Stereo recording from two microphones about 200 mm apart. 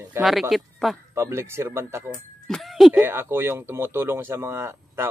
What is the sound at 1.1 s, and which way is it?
Speech, 15° right (ahead or behind).